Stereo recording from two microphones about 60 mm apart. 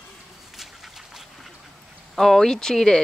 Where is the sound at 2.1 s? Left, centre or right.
Centre.